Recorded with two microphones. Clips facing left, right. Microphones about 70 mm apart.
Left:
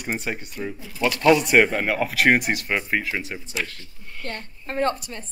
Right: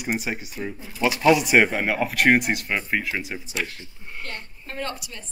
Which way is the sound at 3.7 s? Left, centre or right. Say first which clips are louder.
Right 2 dB; right.